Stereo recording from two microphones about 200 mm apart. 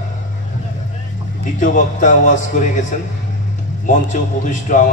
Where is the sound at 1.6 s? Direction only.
40° left (ahead or behind).